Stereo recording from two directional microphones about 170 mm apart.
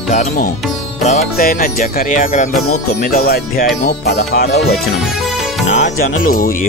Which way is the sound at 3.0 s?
60° left (ahead or behind).